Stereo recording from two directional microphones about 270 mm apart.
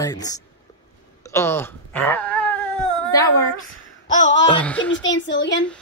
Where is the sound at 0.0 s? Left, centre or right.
Centre.